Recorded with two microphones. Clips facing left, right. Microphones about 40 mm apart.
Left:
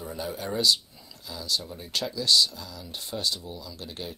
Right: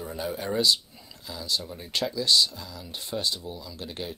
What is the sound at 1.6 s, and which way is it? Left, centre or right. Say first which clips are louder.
Speech: right 2 dB; centre.